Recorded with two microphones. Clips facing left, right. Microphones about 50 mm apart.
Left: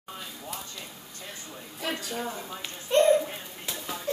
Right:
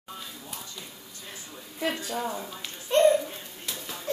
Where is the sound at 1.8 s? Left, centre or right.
Right.